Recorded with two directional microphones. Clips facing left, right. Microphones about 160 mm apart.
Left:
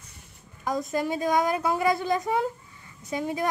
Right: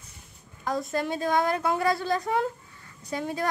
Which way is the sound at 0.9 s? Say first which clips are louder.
Left 2 dB; 10° left (ahead or behind).